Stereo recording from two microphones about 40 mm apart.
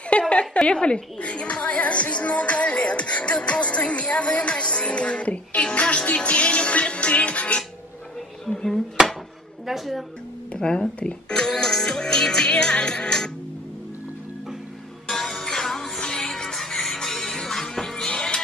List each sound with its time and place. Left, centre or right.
0.3 s a woman's voice: left
8.5 s speech: centre
9.7 s speech: centre
10.6 s speech: centre
15.0 s music: centre